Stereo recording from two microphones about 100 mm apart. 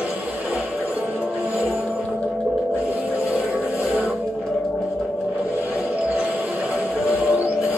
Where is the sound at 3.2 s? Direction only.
15° right (ahead or behind).